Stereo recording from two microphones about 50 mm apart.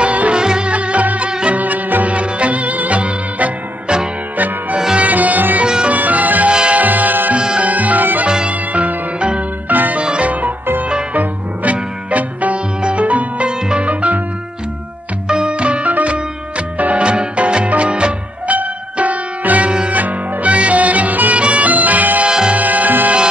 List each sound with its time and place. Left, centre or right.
0.0 s music: right
4.9 s sitar: right
5.9 s music: right
6.5 s music: centre
6.8 s music: right
7.3 s music: right
7.7 s music: right
8.3 s music: centre
9.7 s music: right
10.0 s music: right
15.2 s music: centre
18.6 s music: right